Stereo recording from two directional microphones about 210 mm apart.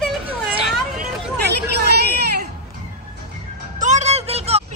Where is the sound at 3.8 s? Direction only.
35° right (ahead or behind).